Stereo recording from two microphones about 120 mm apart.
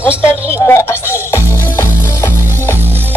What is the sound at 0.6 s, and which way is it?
Music, 25° left (ahead or behind).